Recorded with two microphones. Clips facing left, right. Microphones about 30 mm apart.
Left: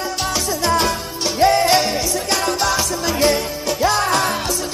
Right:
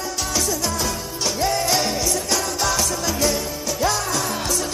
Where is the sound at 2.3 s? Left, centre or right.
Left.